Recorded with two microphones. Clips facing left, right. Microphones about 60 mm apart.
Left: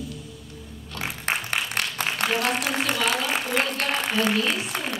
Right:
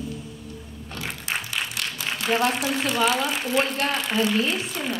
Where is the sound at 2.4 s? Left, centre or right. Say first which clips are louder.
Right 1 dB; left.